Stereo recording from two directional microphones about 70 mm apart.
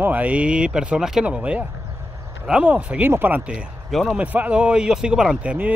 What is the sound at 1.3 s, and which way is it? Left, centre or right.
Speech, centre.